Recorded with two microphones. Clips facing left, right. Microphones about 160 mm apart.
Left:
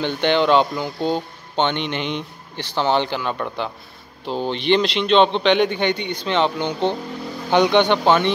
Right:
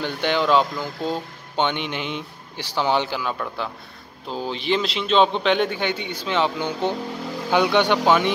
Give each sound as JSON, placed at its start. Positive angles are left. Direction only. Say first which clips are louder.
{"t": 0.0, "sound": "speech", "louder": "left 4 dB", "side_deg": -5}